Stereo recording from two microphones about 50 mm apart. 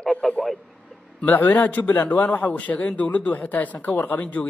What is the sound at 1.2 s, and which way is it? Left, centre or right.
A man's voice, left.